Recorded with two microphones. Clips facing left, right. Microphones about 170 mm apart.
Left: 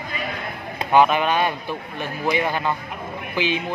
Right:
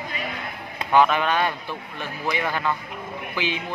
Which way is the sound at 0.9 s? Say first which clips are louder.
Left 2 dB; 15° left (ahead or behind).